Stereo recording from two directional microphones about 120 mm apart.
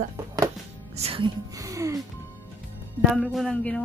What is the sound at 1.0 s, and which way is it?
Speech, 55° right (ahead or behind).